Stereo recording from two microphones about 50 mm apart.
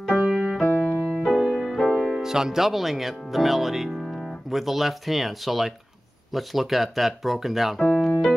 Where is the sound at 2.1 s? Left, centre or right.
Centre.